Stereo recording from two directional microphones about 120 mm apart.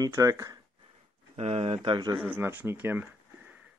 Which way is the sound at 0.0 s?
30° right (ahead or behind).